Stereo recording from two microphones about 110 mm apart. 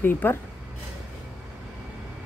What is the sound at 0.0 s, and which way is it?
Speech, 20° left (ahead or behind).